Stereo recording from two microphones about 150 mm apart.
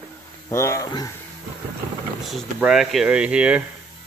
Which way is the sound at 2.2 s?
Centre (ahead or behind).